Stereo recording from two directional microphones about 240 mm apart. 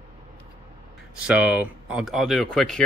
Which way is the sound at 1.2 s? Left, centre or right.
Centre.